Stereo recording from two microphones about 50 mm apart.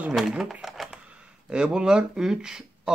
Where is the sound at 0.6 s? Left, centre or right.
Centre.